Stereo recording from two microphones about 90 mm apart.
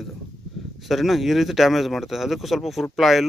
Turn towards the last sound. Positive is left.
turn(degrees=0)  # may be behind; listen again after turning